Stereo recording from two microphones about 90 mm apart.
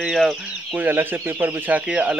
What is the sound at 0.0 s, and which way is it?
Speech, centre (ahead or behind).